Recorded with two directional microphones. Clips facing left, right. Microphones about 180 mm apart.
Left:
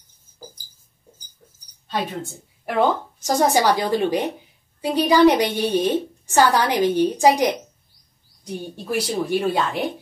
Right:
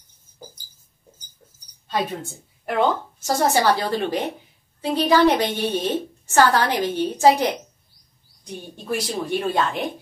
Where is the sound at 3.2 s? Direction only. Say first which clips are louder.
Left 2 dB; 15° left (ahead or behind).